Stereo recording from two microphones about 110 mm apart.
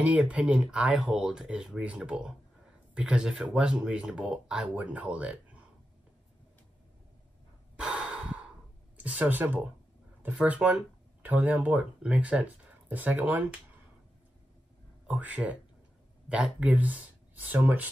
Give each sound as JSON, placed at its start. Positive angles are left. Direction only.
{"t": 0.0, "sound": "speech", "side_deg": -10}
{"t": 7.7, "sound": "breathing", "side_deg": -10}
{"t": 8.9, "sound": "speech", "side_deg": -10}
{"t": 15.0, "sound": "speech", "side_deg": -15}